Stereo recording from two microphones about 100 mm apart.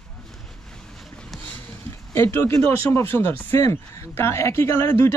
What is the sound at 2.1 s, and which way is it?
Speech, 25° left (ahead or behind).